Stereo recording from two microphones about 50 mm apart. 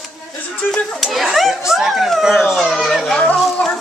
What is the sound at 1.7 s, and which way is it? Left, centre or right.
Speech, centre.